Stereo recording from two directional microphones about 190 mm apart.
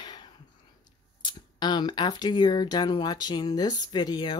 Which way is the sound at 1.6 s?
25° left (ahead or behind).